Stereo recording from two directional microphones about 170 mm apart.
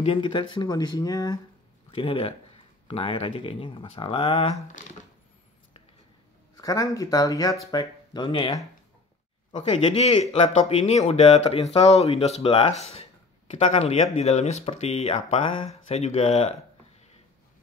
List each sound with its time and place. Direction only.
0.0 s speech: 30° left (ahead or behind)
4.6 s speech: 45° left (ahead or behind)
6.5 s speech: 20° left (ahead or behind); by 16.5 s 40° left (ahead or behind)